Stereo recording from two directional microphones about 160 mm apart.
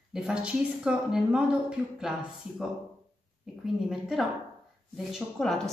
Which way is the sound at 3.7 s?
Centre (ahead or behind).